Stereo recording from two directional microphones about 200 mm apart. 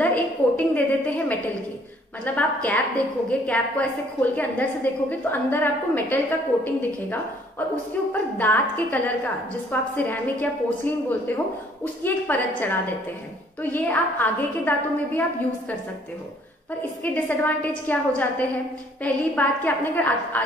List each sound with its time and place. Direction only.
0.0 s a woman's voice: 5° left (ahead or behind)
8.1 s a woman's voice: 10° left (ahead or behind)
17.0 s a woman's voice: 10° left (ahead or behind)